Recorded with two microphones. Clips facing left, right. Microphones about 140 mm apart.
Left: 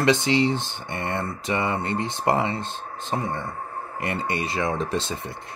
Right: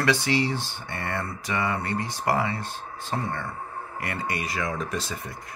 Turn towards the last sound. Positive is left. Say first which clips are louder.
# left 4 dB
turn(degrees=25)  # may be behind; listen again after turning